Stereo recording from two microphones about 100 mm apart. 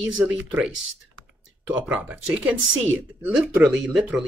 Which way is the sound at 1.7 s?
15° right (ahead or behind).